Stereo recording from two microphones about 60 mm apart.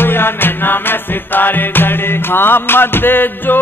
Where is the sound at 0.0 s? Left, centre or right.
Left.